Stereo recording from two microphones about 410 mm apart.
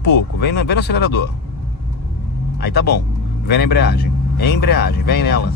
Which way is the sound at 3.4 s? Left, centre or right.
Left.